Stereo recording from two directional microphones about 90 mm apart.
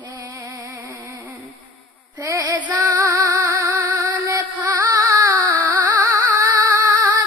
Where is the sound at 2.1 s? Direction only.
40° right (ahead or behind).